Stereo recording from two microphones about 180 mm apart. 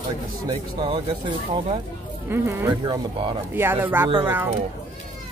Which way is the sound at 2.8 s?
30° right (ahead or behind).